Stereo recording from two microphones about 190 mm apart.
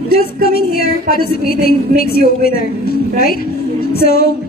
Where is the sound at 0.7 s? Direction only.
50° left (ahead or behind).